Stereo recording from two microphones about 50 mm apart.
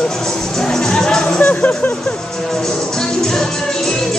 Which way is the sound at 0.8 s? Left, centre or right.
Centre.